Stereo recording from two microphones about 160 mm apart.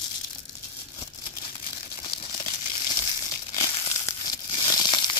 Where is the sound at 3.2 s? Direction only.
25° left (ahead or behind).